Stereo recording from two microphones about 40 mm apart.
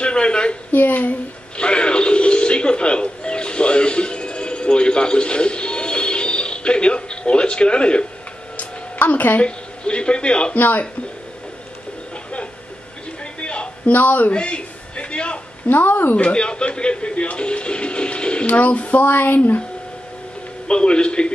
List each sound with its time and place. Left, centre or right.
0.0 s a woman's voice: left
0.7 s speech: left
1.6 s music: left
8.5 s music: left
9.4 s a man's voice: left
13.4 s a sound: left
13.9 s speech: left
14.3 s a sound: left
15.7 s speech: left
16.2 s speech: left
18.5 s speech: left
20.6 s a man's voice: left